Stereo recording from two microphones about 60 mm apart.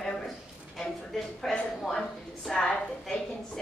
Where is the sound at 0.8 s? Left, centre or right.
Centre.